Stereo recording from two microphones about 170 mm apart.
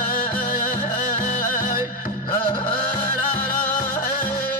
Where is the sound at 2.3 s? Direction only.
25° left (ahead or behind).